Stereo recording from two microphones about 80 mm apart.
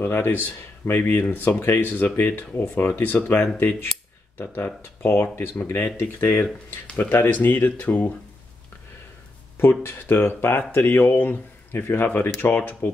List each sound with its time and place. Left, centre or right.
0.0 s speech: left
5.0 s speech: left
9.6 s speech: left